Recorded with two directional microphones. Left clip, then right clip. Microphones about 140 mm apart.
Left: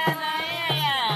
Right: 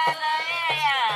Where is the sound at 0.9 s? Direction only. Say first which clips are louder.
Right 2 dB; 45° left (ahead or behind).